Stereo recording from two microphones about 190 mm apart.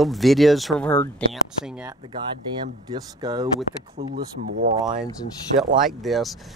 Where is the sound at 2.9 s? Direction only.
20° right (ahead or behind).